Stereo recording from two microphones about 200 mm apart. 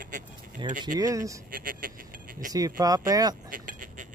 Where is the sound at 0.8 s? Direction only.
20° right (ahead or behind).